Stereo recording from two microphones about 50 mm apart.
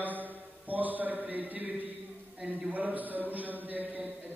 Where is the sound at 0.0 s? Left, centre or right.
Right.